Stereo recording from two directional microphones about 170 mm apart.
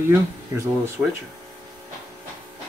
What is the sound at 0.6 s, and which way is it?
Speech, 15° right (ahead or behind).